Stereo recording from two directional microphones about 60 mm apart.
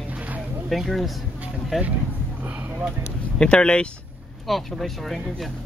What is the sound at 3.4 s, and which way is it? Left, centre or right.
Speech, centre.